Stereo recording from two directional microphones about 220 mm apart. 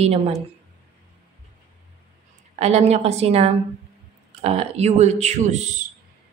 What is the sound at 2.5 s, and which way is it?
Speech, 30° right (ahead or behind).